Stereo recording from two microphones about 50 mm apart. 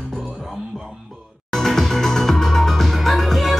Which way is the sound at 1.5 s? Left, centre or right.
Centre.